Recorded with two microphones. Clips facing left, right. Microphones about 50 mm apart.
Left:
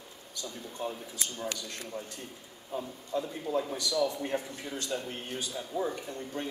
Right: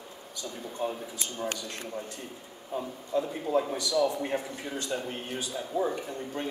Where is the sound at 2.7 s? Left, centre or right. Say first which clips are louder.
Right 3 dB; centre.